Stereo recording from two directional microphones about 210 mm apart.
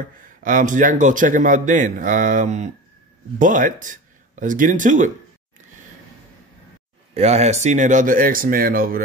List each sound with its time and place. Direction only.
0.4 s speech: 40° right (ahead or behind)
7.2 s speech: 30° right (ahead or behind)